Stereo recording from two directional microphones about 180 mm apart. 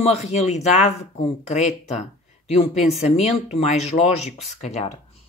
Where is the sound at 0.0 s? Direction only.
40° left (ahead or behind).